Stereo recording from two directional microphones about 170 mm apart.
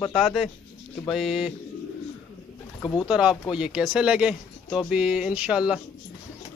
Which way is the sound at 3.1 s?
5° right (ahead or behind).